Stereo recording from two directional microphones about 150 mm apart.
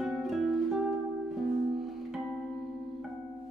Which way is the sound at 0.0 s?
Centre (ahead or behind).